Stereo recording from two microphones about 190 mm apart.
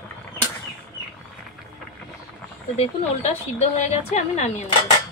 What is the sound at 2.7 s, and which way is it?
Speech, 35° left (ahead or behind).